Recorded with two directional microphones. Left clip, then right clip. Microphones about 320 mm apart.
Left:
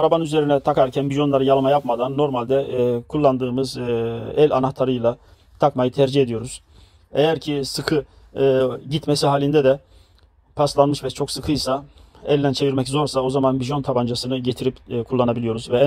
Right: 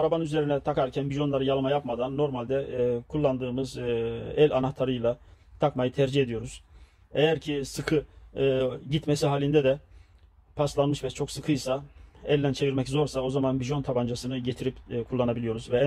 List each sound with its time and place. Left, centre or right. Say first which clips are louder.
0.0 s speech: left 8 dB; left